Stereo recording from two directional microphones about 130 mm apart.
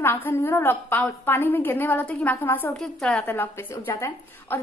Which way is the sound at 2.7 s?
5° left (ahead or behind).